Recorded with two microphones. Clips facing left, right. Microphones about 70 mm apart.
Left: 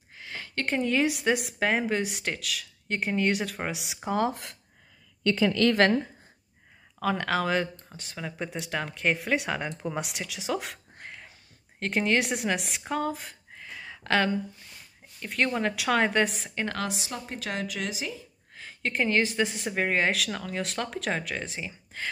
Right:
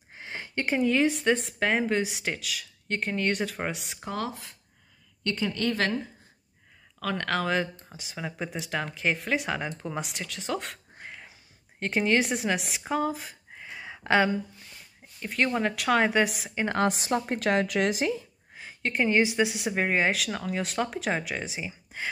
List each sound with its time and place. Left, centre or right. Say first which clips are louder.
0.1 s a sound: right 2 dB; right
0.7 s speech: right 2 dB; centre
4.3 s speech: left 4 dB; left
7.0 s speech: left 2 dB; centre
13.6 s a sound: right 1 dB; centre
15.1 s speech: right 1 dB; centre
16.8 s a woman's voice: right 8 dB; right
18.5 s speech: even; centre